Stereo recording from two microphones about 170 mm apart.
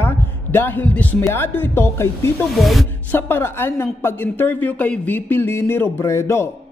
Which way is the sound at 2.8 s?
15° left (ahead or behind).